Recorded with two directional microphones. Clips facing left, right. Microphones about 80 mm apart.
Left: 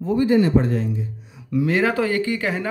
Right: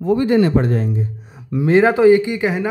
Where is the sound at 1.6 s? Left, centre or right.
Right.